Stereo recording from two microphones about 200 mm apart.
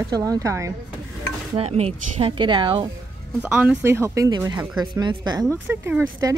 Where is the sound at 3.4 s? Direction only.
5° right (ahead or behind).